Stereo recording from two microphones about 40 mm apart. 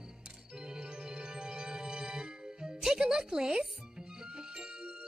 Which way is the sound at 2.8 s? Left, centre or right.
Centre.